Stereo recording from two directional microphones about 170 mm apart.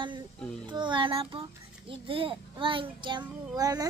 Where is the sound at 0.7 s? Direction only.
30° right (ahead or behind).